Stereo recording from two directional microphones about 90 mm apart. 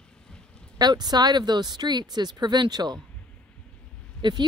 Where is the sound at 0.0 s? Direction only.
10° left (ahead or behind).